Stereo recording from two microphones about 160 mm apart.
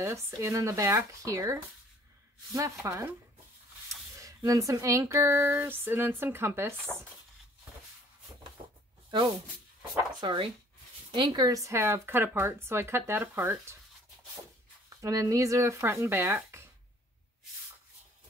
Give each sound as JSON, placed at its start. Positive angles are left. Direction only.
{"t": 0.0, "sound": "speech", "side_deg": -15}
{"t": 4.2, "sound": "speech", "side_deg": -20}
{"t": 6.9, "sound": "speech", "side_deg": 20}
{"t": 10.2, "sound": "speech", "side_deg": -30}
{"t": 15.0, "sound": "speech", "side_deg": -20}